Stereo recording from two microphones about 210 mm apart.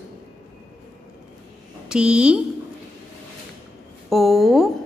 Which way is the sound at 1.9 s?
5° right (ahead or behind).